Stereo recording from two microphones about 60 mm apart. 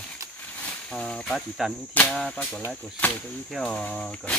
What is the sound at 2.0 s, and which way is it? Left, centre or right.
Speech, left.